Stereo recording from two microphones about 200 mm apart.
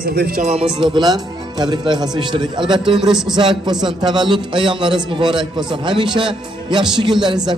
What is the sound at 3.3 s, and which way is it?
A man's voice, 20° right (ahead or behind).